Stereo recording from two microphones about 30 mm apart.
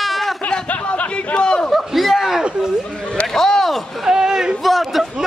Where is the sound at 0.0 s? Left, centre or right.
Centre.